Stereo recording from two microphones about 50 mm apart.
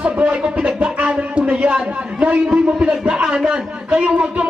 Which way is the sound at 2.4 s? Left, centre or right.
Centre.